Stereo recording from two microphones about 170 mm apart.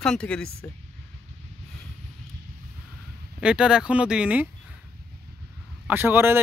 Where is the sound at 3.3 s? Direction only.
5° right (ahead or behind).